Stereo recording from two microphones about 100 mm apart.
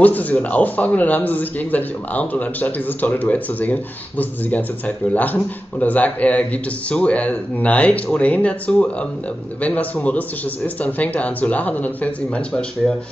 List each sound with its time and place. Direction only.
0.0 s a man's voice: 15° left (ahead or behind)